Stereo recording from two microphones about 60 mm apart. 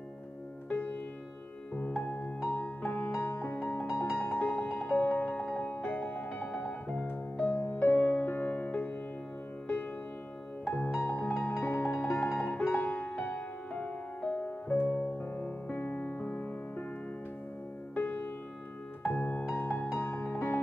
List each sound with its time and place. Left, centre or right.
0.7 s music: left; by 7.1 s centre
7.1 s music: left
10.9 s music: left
17.9 s music: left
20.3 s music: left